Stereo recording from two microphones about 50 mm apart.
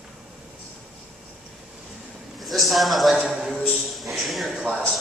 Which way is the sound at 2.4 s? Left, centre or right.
Centre.